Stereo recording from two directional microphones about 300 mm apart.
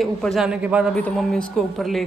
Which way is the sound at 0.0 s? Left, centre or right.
Centre.